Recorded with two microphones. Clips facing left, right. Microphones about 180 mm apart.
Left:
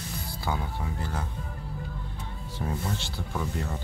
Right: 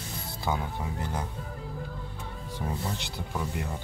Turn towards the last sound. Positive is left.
turn(degrees=-15)  # may be behind; listen again after turning